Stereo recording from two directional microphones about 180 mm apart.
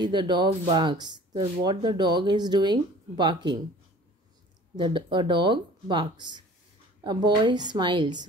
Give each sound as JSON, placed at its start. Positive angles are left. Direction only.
{"t": 0.0, "sound": "speech", "side_deg": -25}
{"t": 4.7, "sound": "speech", "side_deg": -25}